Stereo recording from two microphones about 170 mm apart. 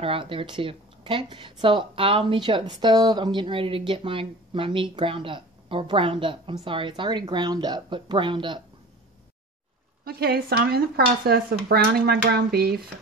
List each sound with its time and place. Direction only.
0.0 s speech: 30° right (ahead or behind)
10.0 s speech: 65° right (ahead or behind)